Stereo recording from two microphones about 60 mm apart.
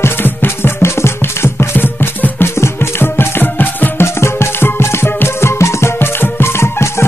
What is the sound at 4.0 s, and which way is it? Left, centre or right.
Music, left.